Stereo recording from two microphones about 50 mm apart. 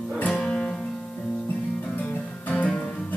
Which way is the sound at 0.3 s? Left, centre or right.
Centre.